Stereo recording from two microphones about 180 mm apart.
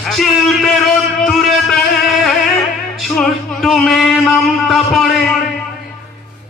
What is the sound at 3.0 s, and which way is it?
Music, centre (ahead or behind).